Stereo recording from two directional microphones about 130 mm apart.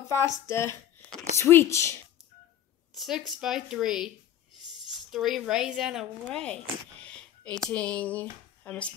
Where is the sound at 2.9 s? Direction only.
Centre (ahead or behind).